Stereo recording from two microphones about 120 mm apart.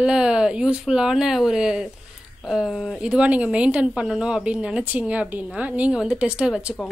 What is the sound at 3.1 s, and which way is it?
A woman's voice, 10° right (ahead or behind).